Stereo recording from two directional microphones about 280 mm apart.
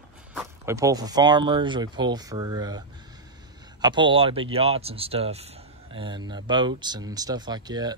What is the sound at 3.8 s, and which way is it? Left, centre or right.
Speech, centre.